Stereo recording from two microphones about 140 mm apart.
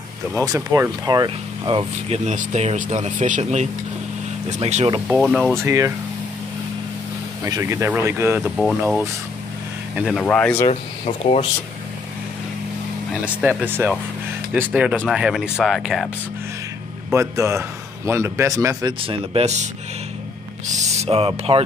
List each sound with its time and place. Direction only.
0.3 s speech: 20° right (ahead or behind); by 4.8 s 55° right (ahead or behind)
5.0 s speech: 5° right (ahead or behind)
5.7 s a man's voice: 20° right (ahead or behind)
7.4 s speech: 20° right (ahead or behind); by 10.2 s 5° right (ahead or behind)
10.2 s speech: 10° left (ahead or behind)
13.1 s speech: 10° right (ahead or behind)
17.1 s a man's voice: 20° right (ahead or behind)
18.9 s speech: 40° right (ahead or behind)